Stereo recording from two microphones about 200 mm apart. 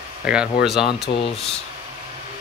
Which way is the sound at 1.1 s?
50° left (ahead or behind).